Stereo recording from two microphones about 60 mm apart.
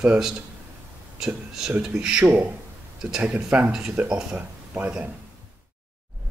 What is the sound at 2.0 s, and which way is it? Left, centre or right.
Speech, centre.